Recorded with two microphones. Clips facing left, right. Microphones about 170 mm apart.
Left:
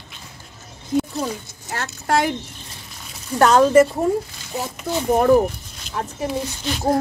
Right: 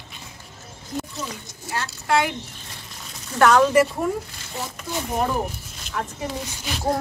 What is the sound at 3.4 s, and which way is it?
Speech, 30° left (ahead or behind).